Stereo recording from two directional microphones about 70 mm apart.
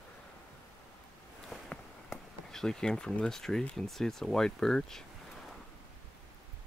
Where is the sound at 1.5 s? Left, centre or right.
Centre.